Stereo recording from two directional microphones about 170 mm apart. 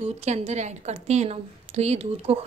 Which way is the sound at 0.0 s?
40° right (ahead or behind).